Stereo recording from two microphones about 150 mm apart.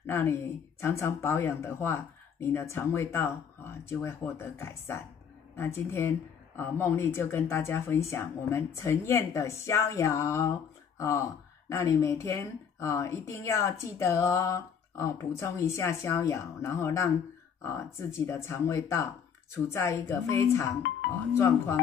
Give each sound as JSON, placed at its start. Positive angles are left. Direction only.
{"t": 0.0, "sound": "a woman's voice", "side_deg": 15}